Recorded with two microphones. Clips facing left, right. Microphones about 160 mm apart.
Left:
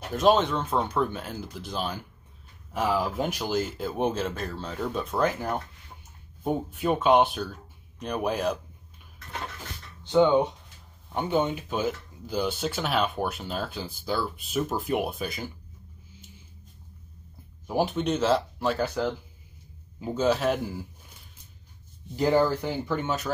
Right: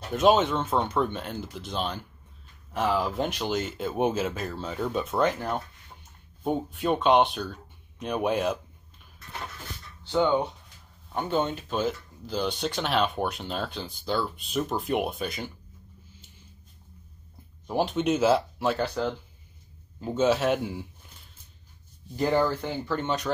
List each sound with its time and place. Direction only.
0.1 s speech: centre (ahead or behind)
10.0 s speech: 15° left (ahead or behind); by 15.5 s centre (ahead or behind)
17.6 s speech: 5° left (ahead or behind)
22.1 s speech: 10° left (ahead or behind)